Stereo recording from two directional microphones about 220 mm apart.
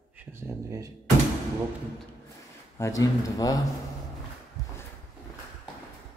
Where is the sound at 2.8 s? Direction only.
15° left (ahead or behind).